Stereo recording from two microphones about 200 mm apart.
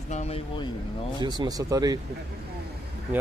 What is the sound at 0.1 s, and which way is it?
Speech, 30° left (ahead or behind).